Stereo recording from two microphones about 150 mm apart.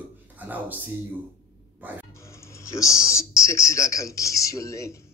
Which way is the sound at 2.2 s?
20° left (ahead or behind).